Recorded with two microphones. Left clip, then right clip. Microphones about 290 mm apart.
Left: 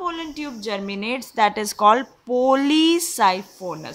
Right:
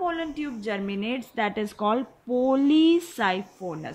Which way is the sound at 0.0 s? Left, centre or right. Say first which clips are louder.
Left 1 dB; centre.